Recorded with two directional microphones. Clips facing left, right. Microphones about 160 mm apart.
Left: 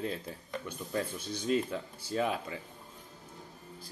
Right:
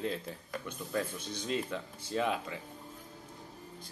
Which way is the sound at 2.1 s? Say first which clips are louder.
Left 1 dB; 40° left (ahead or behind).